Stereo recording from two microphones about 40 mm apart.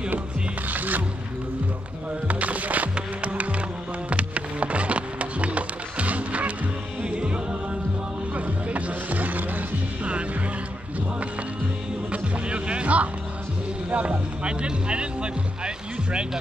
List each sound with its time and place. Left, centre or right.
0.7 s music: right
2.2 s music: right
8.4 s music: right
12.1 s music: right
13.8 s vehicle: right
15.6 s music: right